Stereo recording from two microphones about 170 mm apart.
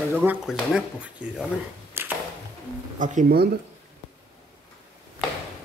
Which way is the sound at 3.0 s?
50° right (ahead or behind).